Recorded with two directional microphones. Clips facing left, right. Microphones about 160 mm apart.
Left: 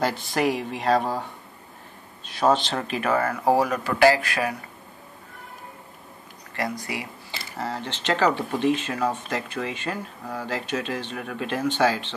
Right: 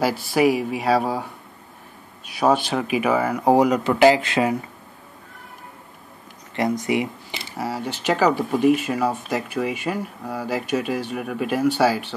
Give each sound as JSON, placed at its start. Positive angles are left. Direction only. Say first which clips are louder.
{"t": 0.0, "sound": "speech", "louder": "right 5 dB", "side_deg": -10}
{"t": 6.5, "sound": "speech", "louder": "right 8 dB", "side_deg": -20}